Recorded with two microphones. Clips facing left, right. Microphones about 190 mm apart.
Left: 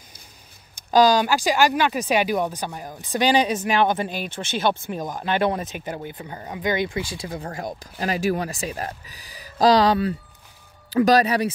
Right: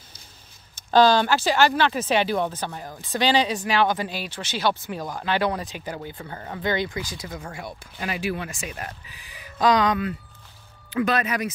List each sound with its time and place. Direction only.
0.9 s speech: 10° left (ahead or behind)
4.1 s speech: 50° left (ahead or behind)
4.6 s speech: 20° left (ahead or behind)